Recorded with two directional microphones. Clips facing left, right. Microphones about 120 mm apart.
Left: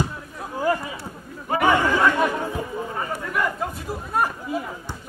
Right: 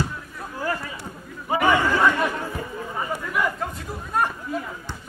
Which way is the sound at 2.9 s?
5° right (ahead or behind).